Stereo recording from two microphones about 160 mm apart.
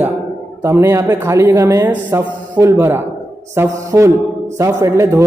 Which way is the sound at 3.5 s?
15° right (ahead or behind).